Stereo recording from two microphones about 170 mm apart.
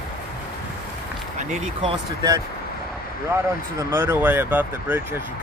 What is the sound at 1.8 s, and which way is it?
Speech, 25° right (ahead or behind).